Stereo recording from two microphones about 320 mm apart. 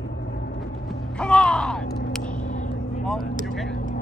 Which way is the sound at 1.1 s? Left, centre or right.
Centre.